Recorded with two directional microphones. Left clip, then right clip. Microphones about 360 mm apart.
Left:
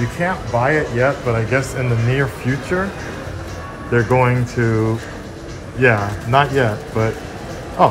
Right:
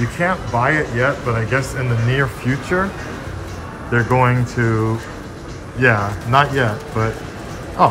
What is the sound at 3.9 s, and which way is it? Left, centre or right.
Speech, centre.